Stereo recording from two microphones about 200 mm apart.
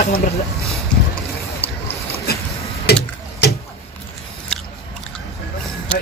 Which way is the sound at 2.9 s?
55° left (ahead or behind).